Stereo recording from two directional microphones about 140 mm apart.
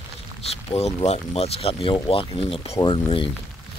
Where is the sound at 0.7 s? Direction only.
50° left (ahead or behind).